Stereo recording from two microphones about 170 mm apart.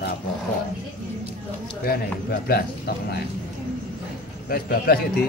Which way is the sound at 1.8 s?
65° left (ahead or behind).